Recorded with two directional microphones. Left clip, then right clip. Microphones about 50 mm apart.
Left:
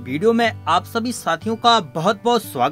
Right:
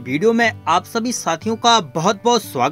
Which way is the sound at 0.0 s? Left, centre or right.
Right.